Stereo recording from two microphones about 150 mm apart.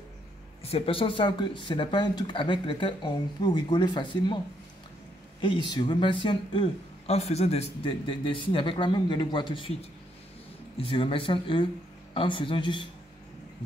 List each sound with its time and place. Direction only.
0.6 s speech: 40° left (ahead or behind)
5.4 s speech: 30° left (ahead or behind)
10.8 s speech: 35° left (ahead or behind)